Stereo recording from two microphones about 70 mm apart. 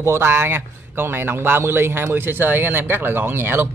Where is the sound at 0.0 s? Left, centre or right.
Right.